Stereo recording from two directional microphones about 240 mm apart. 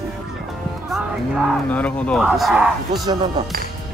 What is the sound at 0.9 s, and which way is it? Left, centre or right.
Speech, centre.